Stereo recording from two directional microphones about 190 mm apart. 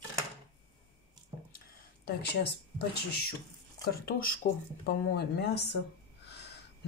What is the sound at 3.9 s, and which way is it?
A woman's voice, 50° left (ahead or behind).